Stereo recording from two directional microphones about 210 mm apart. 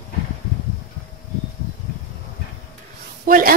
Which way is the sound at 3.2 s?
40° right (ahead or behind).